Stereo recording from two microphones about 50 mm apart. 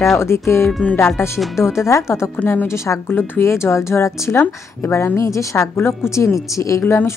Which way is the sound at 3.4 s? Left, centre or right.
Left.